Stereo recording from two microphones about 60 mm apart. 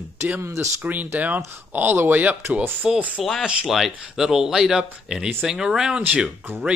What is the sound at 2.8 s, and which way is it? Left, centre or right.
Speech, right.